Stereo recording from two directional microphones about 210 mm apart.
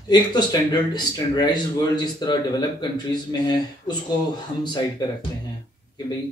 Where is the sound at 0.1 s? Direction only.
20° left (ahead or behind).